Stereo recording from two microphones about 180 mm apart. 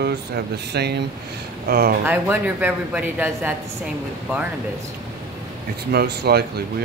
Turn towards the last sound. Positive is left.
turn(degrees=-65)  # may be behind; listen again after turning